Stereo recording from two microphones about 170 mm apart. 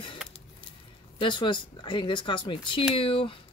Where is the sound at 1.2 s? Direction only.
30° left (ahead or behind).